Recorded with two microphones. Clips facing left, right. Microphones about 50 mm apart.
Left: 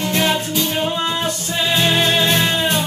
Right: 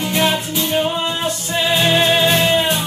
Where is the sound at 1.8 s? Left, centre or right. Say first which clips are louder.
Right 2 dB; centre.